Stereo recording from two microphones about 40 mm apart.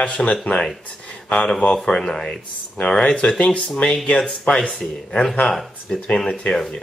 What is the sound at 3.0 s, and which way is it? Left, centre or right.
Speech, left.